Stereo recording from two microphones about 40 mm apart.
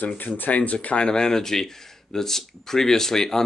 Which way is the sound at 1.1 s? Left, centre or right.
Centre.